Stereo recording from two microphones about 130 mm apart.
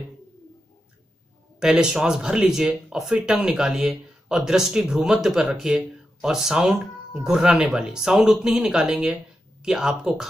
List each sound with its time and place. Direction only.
1.6 s speech: 5° right (ahead or behind)